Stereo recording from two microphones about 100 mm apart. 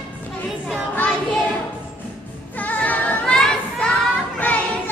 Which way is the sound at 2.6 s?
15° left (ahead or behind).